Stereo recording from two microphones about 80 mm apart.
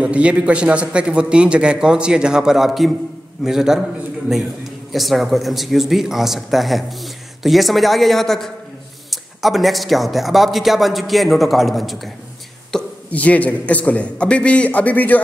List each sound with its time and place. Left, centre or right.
0.0 s a man's voice: centre
4.9 s speech: centre
12.7 s a sound: centre
13.1 s a man's voice: centre